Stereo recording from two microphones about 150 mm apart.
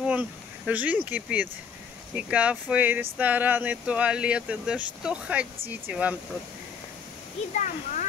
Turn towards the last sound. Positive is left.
turn(degrees=60)  # may be behind; listen again after turning